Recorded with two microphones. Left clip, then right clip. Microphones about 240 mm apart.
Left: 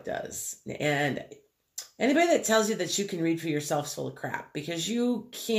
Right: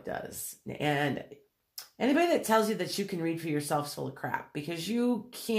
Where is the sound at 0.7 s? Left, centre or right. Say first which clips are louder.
Left 2 dB; centre.